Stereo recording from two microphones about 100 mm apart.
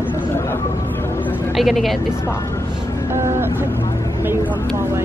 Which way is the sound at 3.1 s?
25° right (ahead or behind).